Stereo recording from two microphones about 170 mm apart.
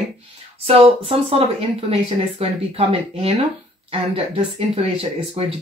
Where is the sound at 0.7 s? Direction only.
35° right (ahead or behind).